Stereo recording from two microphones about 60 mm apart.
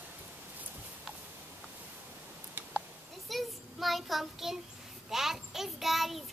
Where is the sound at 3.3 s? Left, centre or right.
Centre.